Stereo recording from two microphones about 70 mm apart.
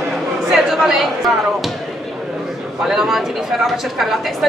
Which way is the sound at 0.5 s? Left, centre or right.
Centre.